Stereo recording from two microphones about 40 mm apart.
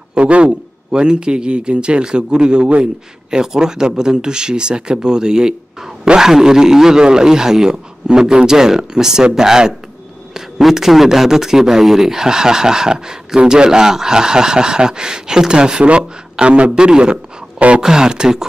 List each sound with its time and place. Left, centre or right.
0.1 s a man's voice: right